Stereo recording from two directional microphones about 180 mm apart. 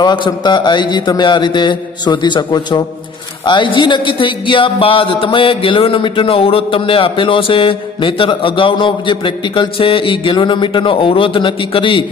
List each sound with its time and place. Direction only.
0.0 s speech: 25° left (ahead or behind)